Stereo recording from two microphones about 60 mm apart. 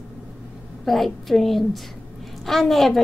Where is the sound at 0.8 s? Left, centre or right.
Centre.